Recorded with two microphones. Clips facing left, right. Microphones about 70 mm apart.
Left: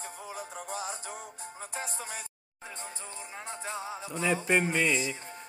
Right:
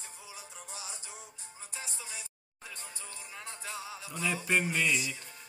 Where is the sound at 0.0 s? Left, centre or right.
Left.